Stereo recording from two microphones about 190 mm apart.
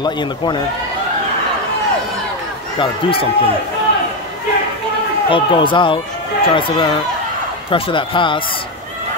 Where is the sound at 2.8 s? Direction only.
30° left (ahead or behind).